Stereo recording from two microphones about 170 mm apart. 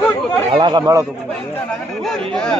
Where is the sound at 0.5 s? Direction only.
25° right (ahead or behind).